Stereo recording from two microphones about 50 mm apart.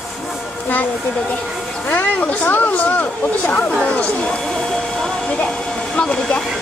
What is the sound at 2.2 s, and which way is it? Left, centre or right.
Speech, left.